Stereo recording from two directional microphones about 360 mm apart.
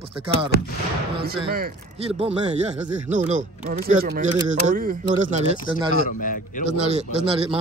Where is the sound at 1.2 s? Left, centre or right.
Right.